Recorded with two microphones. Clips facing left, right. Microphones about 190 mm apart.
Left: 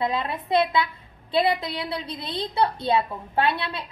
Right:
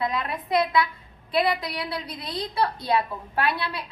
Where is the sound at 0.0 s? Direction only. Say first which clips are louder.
Left 2 dB; 25° left (ahead or behind).